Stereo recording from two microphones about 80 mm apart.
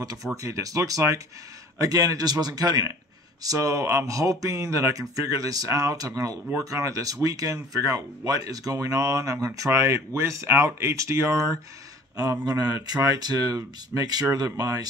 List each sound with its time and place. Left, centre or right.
0.4 s speech: right
3.4 s speech: right
12.2 s speech: right